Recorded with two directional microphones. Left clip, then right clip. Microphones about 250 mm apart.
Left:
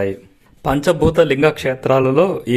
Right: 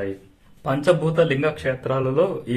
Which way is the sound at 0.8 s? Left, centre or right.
Left.